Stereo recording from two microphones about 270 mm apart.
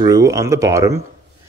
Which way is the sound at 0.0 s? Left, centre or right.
Centre.